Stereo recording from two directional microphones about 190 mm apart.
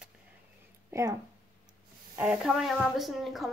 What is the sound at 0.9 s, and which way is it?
Speech, 15° right (ahead or behind).